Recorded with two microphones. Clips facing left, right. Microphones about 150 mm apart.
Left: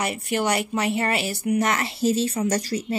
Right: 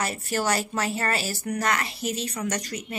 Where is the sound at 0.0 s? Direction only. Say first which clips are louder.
Left 3 dB; 20° left (ahead or behind).